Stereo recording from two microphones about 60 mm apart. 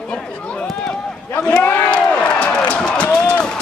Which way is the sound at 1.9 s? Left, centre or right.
Centre.